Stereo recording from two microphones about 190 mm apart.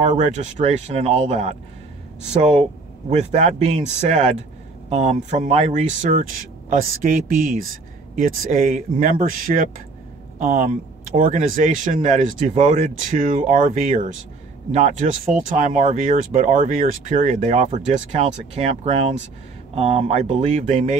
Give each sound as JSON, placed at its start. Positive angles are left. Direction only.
{"t": 0.0, "sound": "a man's voice", "side_deg": -40}
{"t": 3.1, "sound": "a man's voice", "side_deg": -35}